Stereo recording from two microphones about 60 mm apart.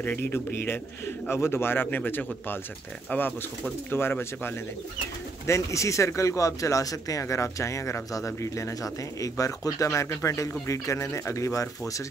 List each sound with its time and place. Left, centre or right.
0.0 s speech: left
5.5 s speech: left